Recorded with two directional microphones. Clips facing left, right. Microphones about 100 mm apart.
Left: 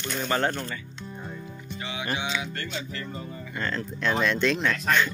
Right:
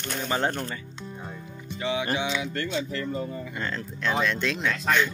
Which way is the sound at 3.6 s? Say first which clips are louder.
Left 4 dB; 10° right (ahead or behind).